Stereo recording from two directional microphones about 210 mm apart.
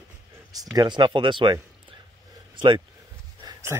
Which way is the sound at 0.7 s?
20° right (ahead or behind).